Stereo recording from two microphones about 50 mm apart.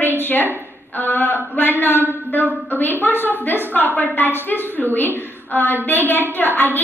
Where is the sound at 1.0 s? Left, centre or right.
Left.